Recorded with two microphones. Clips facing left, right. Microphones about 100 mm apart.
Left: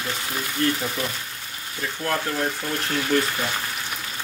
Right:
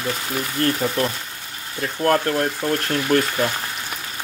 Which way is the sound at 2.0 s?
55° right (ahead or behind).